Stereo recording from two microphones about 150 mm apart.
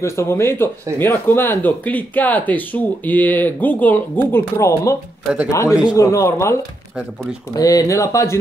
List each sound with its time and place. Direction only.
0.0 s speech: 20° left (ahead or behind)
7.5 s speech: 25° left (ahead or behind)